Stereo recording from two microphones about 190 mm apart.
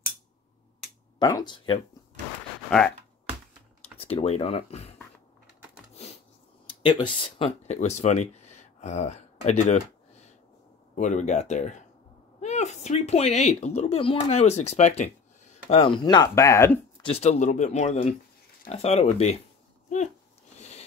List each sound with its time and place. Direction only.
1.2 s speech: 20° left (ahead or behind)
4.0 s speech: 30° left (ahead or behind)
6.8 s speech: 25° left (ahead or behind)
11.0 s speech: 40° left (ahead or behind); by 16.8 s 15° left (ahead or behind)
17.0 s speech: 35° left (ahead or behind)
20.5 s a sound: 35° left (ahead or behind)